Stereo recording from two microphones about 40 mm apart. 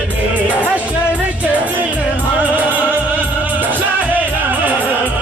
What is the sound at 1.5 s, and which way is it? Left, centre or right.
Music, right.